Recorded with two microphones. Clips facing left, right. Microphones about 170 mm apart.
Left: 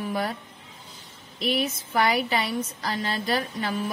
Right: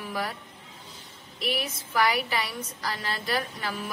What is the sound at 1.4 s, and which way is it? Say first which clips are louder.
A woman's voice: left 5 dB; 25° left (ahead or behind).